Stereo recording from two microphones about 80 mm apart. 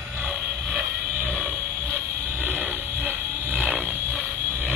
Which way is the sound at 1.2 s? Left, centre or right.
Right.